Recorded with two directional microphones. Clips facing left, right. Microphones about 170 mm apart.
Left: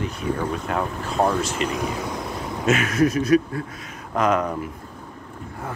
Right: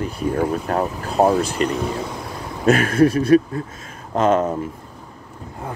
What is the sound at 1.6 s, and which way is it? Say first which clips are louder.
Speech: right 3 dB; 15° left (ahead or behind).